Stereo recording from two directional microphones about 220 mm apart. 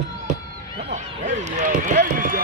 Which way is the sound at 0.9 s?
30° right (ahead or behind).